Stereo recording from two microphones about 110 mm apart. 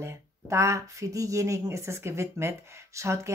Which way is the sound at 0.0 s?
25° right (ahead or behind).